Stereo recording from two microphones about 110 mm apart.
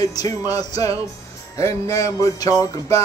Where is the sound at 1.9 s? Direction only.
30° left (ahead or behind).